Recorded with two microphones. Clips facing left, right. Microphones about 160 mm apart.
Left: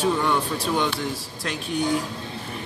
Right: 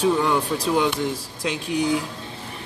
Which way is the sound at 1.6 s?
90° right.